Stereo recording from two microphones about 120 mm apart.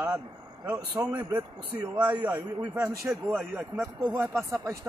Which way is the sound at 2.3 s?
10° right (ahead or behind).